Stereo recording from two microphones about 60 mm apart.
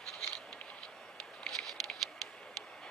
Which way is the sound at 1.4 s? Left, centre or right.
Centre.